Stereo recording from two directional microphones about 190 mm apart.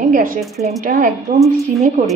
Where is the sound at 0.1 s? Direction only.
45° right (ahead or behind).